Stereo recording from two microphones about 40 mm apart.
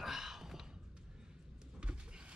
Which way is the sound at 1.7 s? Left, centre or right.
Right.